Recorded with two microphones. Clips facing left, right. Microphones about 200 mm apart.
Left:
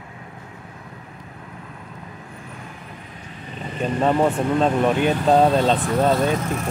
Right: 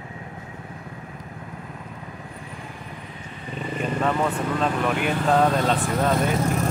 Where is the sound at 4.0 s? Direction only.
30° left (ahead or behind).